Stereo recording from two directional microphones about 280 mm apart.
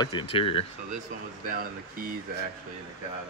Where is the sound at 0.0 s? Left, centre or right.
Centre.